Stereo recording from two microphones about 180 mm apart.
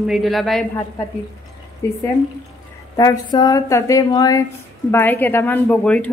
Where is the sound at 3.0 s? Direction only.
25° left (ahead or behind).